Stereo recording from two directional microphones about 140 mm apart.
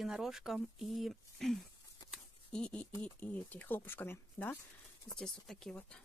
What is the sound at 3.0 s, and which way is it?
Speech, 10° left (ahead or behind).